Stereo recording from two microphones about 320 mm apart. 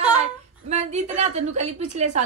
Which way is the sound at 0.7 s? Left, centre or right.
Right.